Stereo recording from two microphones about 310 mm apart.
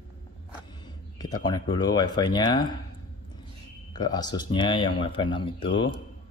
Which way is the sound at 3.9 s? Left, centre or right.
Centre.